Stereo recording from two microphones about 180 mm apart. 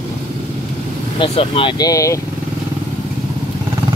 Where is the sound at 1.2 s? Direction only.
30° left (ahead or behind).